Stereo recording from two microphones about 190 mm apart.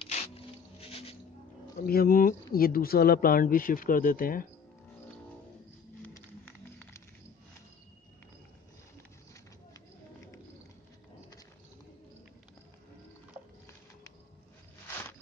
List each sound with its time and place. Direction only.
0.0 s a sound: 30° left (ahead or behind)
1.9 s speech: 50° left (ahead or behind)
6.0 s music: 10° left (ahead or behind)